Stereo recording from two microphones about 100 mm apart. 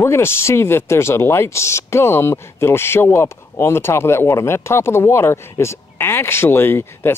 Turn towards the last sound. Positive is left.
turn(degrees=25)  # may be behind; listen again after turning